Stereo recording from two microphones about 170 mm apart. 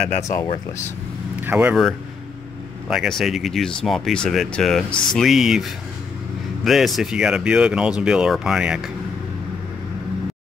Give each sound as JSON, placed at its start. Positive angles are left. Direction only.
{"t": 0.2, "sound": "speech", "side_deg": 15}
{"t": 1.4, "sound": "speech", "side_deg": -10}